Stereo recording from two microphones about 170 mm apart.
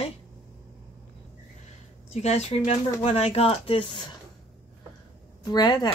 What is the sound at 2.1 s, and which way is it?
A woman's voice, 40° left (ahead or behind).